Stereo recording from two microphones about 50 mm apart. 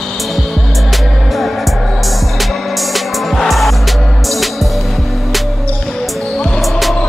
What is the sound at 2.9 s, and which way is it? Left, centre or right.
Music, centre.